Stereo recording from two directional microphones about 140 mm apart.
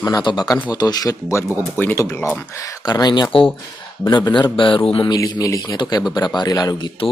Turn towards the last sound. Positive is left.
turn(degrees=25)  # may be behind; listen again after turning